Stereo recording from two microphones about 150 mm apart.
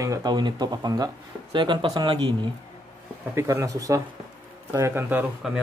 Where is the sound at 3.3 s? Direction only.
20° right (ahead or behind).